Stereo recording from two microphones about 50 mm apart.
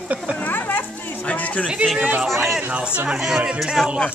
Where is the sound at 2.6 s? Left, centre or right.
Right.